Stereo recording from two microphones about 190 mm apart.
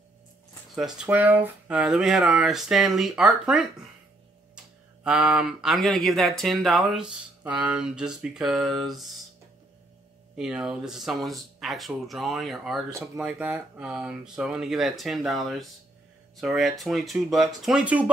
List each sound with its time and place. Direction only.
0.7 s speech: 5° right (ahead or behind)
5.0 s speech: 5° right (ahead or behind)
10.3 s speech: 5° right (ahead or behind)
12.9 s speech: 15° right (ahead or behind)